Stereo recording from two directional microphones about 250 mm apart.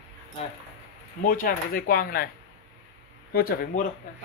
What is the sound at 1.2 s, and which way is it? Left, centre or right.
Speech, left.